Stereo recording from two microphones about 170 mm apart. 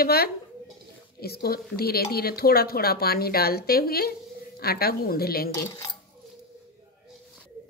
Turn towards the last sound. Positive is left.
turn(degrees=20)  # may be behind; listen again after turning